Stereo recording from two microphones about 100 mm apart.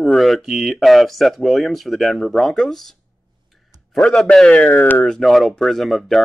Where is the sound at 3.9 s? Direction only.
5° left (ahead or behind).